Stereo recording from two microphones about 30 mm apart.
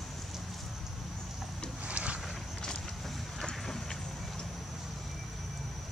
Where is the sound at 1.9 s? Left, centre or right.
Right.